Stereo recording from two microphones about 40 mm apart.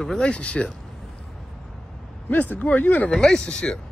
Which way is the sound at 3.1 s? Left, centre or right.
Centre.